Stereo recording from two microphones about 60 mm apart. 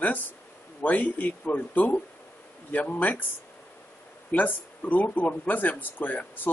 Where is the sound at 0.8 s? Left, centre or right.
Left.